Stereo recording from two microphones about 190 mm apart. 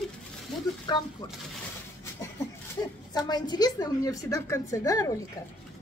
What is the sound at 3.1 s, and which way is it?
A woman's voice, 20° left (ahead or behind).